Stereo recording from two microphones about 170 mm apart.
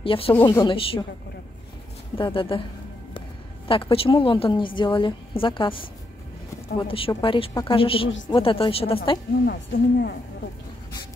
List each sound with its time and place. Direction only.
0.0 s a woman's voice: 30° left (ahead or behind)
2.1 s a woman's voice: 30° left (ahead or behind)
9.5 s speech: 75° left (ahead or behind)